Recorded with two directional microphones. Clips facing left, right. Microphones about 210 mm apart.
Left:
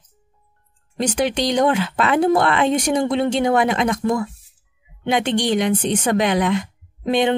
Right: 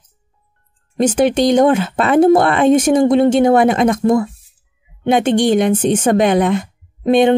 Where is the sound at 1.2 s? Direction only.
50° right (ahead or behind).